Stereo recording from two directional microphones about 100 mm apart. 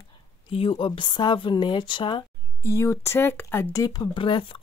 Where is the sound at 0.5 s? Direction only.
65° left (ahead or behind).